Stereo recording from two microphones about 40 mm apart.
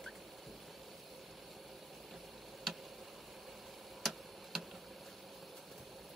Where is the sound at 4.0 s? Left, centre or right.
Centre.